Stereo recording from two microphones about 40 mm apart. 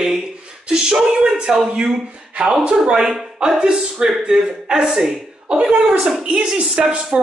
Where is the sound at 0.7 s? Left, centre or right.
Right.